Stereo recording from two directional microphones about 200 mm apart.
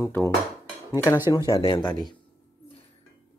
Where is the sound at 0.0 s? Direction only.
15° left (ahead or behind).